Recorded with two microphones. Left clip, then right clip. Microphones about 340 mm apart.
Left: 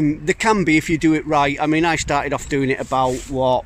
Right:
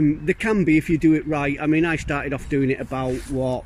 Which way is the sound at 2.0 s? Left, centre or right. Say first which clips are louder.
Left 6 dB; centre.